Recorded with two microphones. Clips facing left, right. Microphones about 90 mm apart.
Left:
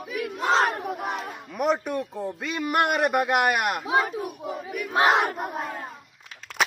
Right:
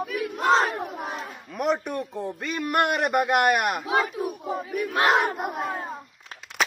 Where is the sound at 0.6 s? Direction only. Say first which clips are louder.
Left 2 dB; 65° left (ahead or behind).